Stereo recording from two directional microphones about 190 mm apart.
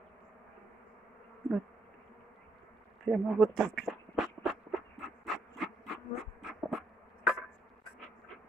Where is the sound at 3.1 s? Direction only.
Centre (ahead or behind).